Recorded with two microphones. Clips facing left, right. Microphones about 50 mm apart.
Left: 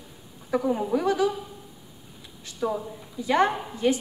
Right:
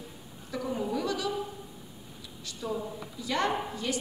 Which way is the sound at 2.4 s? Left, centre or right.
Left.